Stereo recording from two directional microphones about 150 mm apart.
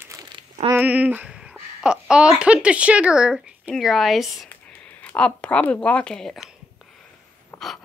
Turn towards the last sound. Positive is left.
turn(degrees=0)  # may be behind; listen again after turning